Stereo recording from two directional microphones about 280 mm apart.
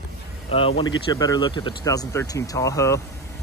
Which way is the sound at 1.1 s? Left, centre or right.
Centre.